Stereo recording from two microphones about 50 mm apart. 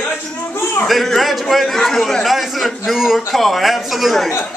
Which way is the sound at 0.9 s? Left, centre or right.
Centre.